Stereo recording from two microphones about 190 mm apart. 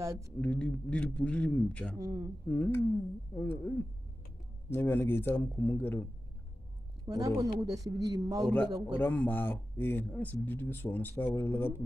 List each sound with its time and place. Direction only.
0.0 s speech: 15° right (ahead or behind)
0.4 s a man's voice: 5° left (ahead or behind)
2.0 s speech: 20° right (ahead or behind)
2.4 s speech: 10° left (ahead or behind)
7.1 s speech: 20° right (ahead or behind)
9.0 s speech: 10° left (ahead or behind)